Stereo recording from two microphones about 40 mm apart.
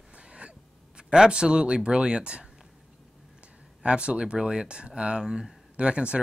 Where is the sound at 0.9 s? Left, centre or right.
Centre.